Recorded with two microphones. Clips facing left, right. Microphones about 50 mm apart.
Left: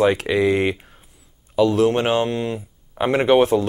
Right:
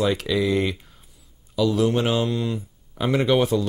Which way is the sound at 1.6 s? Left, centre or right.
Left.